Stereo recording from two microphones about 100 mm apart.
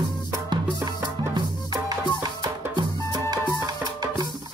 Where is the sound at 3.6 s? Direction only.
40° right (ahead or behind).